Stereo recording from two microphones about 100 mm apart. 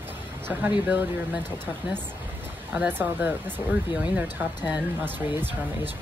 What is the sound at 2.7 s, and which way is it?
Speech, 20° right (ahead or behind).